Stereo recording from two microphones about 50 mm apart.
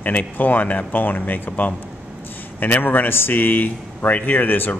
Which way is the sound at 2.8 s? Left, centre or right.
Left.